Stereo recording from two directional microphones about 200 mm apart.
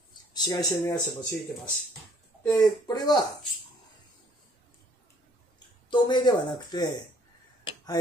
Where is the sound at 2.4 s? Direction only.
20° left (ahead or behind).